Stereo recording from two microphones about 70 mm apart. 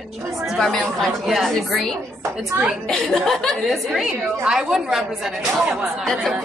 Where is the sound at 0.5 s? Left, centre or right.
Centre.